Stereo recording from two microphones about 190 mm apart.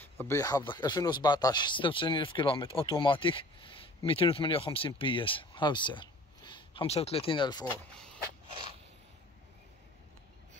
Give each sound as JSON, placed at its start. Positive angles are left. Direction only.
{"t": 0.0, "sound": "speech", "side_deg": 10}